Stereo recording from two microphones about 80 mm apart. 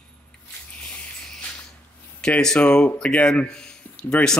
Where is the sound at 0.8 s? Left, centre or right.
Centre.